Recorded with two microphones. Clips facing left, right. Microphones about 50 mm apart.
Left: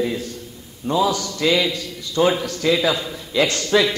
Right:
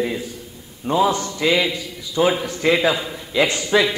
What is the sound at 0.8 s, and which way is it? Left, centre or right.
Speech, right.